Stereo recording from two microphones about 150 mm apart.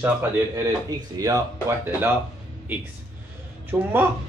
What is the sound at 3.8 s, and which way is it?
Speech, 15° right (ahead or behind).